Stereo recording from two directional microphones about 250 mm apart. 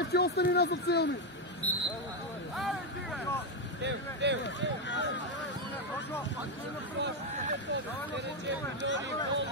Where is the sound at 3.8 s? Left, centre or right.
Right.